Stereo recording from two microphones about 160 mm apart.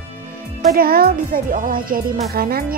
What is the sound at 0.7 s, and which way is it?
Speech, 70° right (ahead or behind).